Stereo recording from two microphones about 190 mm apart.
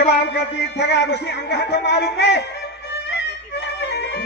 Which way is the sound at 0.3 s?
65° left (ahead or behind).